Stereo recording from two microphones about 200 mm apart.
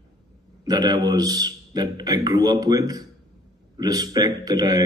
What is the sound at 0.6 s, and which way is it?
A man's voice, 20° right (ahead or behind).